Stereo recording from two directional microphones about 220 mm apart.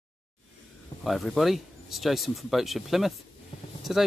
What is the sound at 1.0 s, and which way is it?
Speech, centre (ahead or behind).